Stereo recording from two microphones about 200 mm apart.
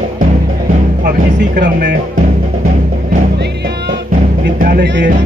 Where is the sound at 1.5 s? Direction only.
45° right (ahead or behind).